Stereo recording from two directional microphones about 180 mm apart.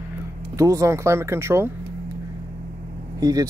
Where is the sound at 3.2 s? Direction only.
20° right (ahead or behind).